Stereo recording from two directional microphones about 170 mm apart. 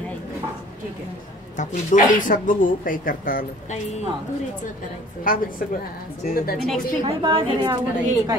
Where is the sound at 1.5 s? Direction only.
50° left (ahead or behind).